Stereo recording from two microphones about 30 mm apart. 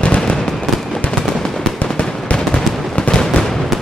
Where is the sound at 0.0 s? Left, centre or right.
Left.